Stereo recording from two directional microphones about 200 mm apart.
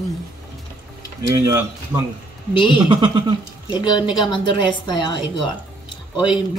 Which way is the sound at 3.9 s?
20° left (ahead or behind).